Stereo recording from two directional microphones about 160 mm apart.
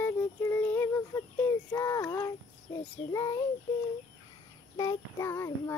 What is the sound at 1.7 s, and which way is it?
Speech, 20° left (ahead or behind).